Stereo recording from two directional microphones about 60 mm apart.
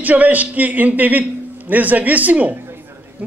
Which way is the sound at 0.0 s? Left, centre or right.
Right.